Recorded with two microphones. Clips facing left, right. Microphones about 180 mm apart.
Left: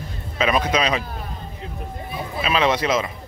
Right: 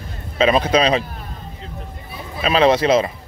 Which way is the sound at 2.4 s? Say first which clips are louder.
Right 6 dB; 35° right (ahead or behind).